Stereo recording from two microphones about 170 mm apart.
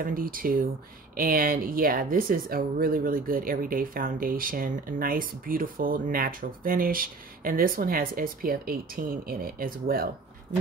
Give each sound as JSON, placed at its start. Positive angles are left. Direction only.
{"t": 0.0, "sound": "speech", "side_deg": -55}